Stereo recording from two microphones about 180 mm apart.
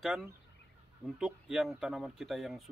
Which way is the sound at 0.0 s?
5° right (ahead or behind).